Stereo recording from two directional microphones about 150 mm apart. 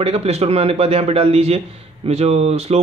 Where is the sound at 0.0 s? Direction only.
40° right (ahead or behind).